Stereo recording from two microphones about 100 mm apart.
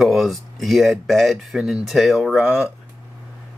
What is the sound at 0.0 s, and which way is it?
Speech, centre (ahead or behind).